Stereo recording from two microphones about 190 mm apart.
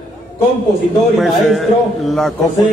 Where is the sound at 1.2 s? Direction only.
Centre (ahead or behind).